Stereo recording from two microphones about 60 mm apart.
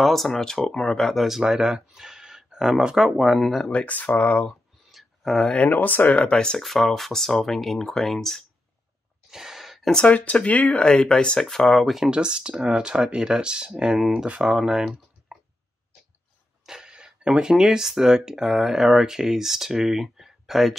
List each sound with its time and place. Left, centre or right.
0.0 s speech: centre
3.3 s speech: centre
3.7 s speech: left
4.9 s a sound: centre
5.4 s speech: centre
5.7 s speech: left; by 6.6 s centre
6.6 s speech: centre
9.3 s gasp: centre
9.9 s speech: left; by 12.1 s centre
12.1 s speech: centre
15.3 s a sound: centre
16.6 s speech: centre